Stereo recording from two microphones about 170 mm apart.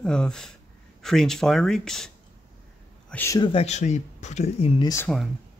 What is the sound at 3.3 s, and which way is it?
Speech, 30° left (ahead or behind).